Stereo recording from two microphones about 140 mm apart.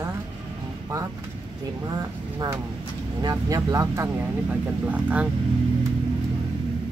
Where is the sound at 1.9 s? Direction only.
30° right (ahead or behind); by 5.3 s 10° right (ahead or behind).